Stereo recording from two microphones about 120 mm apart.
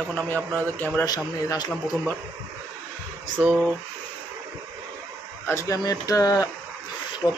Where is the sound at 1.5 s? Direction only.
35° left (ahead or behind).